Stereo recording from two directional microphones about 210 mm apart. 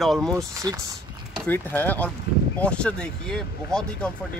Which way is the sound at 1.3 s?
5° left (ahead or behind).